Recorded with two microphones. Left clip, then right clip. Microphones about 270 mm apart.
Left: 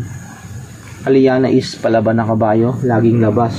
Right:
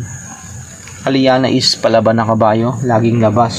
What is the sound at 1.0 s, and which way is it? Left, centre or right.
Speech, right.